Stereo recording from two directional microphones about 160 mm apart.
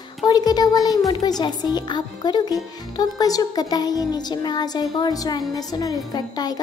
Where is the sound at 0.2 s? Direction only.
25° left (ahead or behind).